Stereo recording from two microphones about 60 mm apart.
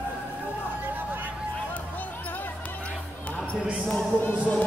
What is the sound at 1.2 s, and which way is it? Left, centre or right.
Music, left.